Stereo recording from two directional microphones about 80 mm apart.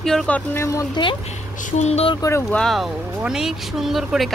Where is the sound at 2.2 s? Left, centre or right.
Left.